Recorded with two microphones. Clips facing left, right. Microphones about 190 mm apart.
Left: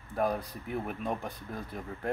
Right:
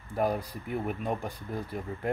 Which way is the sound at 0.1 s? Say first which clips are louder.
Right 2 dB; 10° right (ahead or behind).